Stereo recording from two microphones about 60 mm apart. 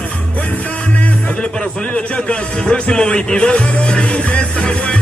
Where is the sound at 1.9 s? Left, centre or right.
Centre.